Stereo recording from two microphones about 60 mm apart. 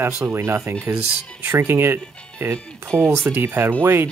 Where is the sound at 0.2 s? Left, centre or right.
Right.